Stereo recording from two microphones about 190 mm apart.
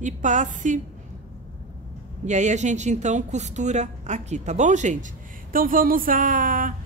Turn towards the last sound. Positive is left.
turn(degrees=-45)  # may be behind; listen again after turning